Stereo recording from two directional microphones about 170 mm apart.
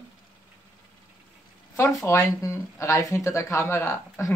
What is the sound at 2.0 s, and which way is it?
Speech, 15° left (ahead or behind).